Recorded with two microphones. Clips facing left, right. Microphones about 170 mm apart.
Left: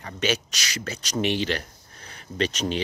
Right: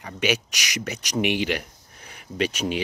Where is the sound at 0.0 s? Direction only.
15° right (ahead or behind).